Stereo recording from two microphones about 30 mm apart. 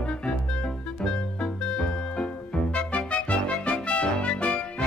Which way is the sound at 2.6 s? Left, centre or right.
Left.